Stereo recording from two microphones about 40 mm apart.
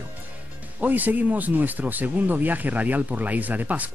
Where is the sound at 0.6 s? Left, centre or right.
Right.